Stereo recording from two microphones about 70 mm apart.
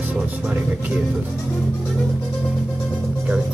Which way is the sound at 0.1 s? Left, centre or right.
Centre.